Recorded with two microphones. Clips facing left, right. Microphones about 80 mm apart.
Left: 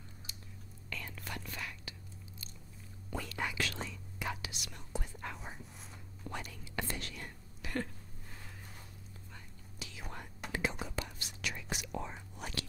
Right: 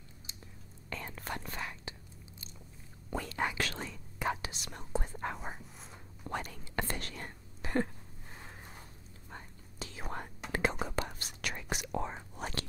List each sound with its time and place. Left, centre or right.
0.8 s whispering: right
3.2 s whispering: right
9.3 s whispering: right